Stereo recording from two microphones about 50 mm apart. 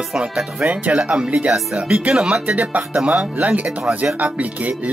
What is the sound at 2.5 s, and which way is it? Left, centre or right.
Speech, right.